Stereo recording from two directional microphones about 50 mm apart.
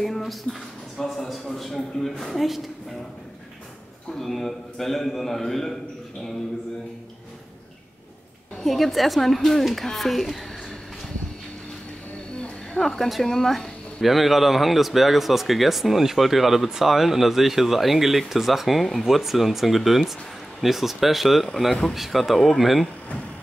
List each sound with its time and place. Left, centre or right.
0.0 s speech: centre
4.1 s speech: centre
8.6 s speech: centre
12.4 s speech: centre